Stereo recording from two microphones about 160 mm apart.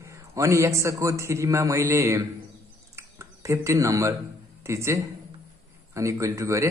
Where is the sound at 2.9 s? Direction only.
15° right (ahead or behind).